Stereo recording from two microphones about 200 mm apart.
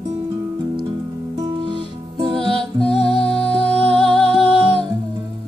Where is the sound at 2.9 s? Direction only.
30° left (ahead or behind).